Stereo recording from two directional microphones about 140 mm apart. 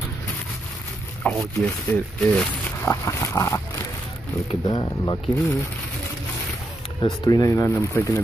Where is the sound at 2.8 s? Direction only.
20° left (ahead or behind).